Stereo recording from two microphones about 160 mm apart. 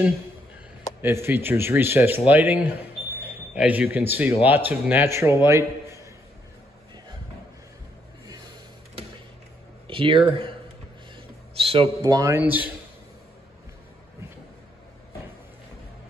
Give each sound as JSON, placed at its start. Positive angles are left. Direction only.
{"t": 1.0, "sound": "a man's voice", "side_deg": -15}
{"t": 8.3, "sound": "a sound", "side_deg": -25}
{"t": 9.8, "sound": "speech", "side_deg": -35}
{"t": 11.5, "sound": "a man's voice", "side_deg": -35}
{"t": 12.0, "sound": "a man's voice", "side_deg": -20}